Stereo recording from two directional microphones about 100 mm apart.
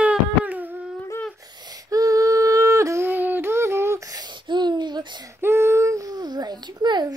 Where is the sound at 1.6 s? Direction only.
40° right (ahead or behind).